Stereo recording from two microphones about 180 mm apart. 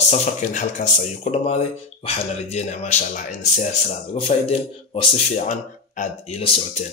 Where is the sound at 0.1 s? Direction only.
40° left (ahead or behind).